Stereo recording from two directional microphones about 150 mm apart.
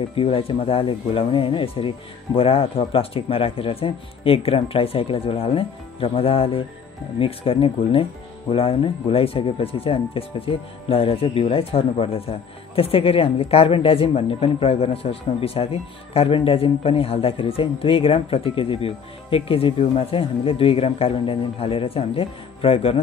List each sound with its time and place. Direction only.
0.1 s speech: 40° left (ahead or behind)